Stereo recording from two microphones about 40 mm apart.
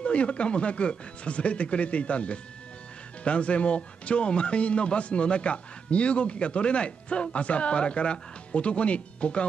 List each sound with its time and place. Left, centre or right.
0.0 s a man's voice: left